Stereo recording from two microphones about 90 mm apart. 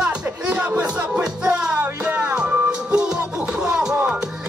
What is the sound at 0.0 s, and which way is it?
Music, 10° right (ahead or behind).